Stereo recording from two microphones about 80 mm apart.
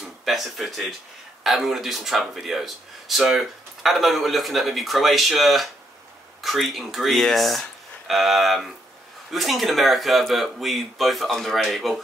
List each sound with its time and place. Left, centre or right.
0.0 s speech: centre